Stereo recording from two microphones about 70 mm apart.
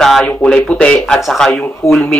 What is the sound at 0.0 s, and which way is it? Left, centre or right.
Speech, centre.